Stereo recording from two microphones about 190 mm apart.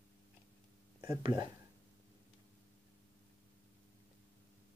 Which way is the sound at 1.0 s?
15° right (ahead or behind).